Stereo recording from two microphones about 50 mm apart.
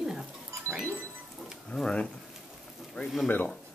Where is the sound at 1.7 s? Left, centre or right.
Centre.